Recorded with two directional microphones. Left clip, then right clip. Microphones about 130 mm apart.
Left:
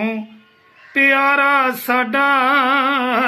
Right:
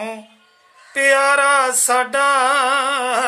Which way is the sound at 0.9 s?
25° right (ahead or behind).